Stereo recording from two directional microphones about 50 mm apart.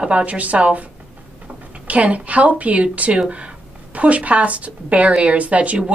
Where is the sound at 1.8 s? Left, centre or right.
Right.